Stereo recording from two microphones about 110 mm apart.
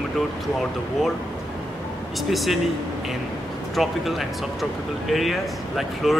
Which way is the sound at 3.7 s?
Centre (ahead or behind).